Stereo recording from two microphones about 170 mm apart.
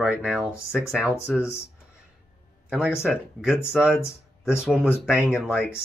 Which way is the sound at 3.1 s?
5° right (ahead or behind).